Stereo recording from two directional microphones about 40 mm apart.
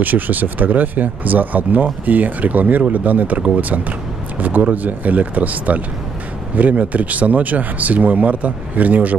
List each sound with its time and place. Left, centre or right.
0.0 s speech: right